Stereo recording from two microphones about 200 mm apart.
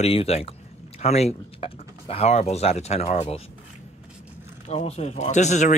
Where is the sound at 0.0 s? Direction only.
30° left (ahead or behind).